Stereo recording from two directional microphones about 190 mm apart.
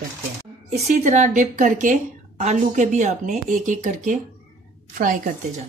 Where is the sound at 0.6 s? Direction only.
35° right (ahead or behind).